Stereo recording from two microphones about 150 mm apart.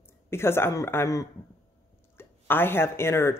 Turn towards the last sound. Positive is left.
turn(degrees=15)  # may be behind; listen again after turning